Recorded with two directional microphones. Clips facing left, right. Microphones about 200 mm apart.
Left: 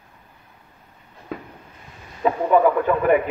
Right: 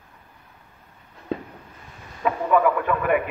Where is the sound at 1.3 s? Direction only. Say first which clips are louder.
Right 4 dB; 30° right (ahead or behind).